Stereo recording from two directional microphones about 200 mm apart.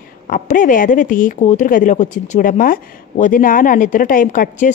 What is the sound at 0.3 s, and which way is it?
Speech, 40° left (ahead or behind).